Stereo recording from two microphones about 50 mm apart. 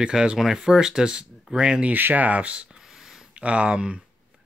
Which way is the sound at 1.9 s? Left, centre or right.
Right.